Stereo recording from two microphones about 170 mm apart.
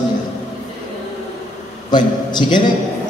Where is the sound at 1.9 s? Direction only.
25° left (ahead or behind).